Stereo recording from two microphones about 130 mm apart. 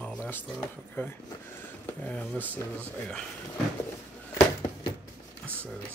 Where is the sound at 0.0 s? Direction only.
10° left (ahead or behind).